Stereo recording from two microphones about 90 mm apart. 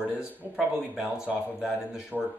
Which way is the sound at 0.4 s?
15° right (ahead or behind).